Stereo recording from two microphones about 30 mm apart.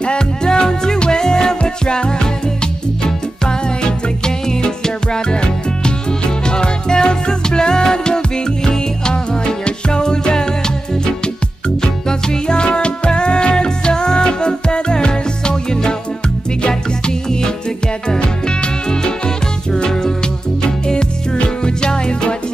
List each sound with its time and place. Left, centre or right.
0.0 s music: left
1.6 s music: left
11.8 s music: left
17.0 s music: left